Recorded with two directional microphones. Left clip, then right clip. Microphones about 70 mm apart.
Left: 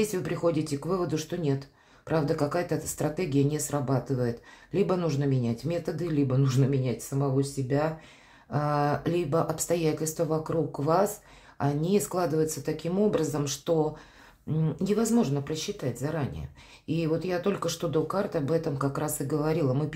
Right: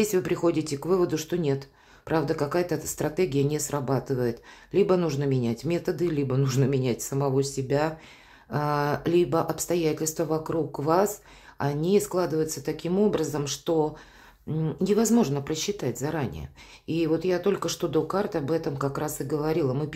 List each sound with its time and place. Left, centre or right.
0.0 s speech: right
7.1 s a woman's voice: right
8.5 s speech: right
9.7 s speech: centre
9.9 s speech: right
12.4 s speech: right
15.0 s a woman's voice: right
16.8 s speech: right